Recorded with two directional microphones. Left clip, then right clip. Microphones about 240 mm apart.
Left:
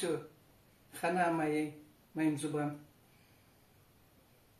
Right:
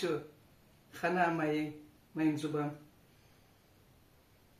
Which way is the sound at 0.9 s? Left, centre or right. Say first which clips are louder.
Right 1 dB; centre.